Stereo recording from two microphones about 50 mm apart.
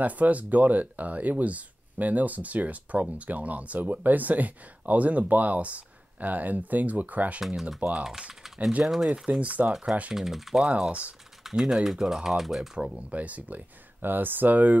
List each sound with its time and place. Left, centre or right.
0.0 s speech: right
8.0 s speech: centre
9.4 s speech: right
10.1 s speech: centre
10.6 s speech: right
11.4 s speech: centre
13.1 s speech: right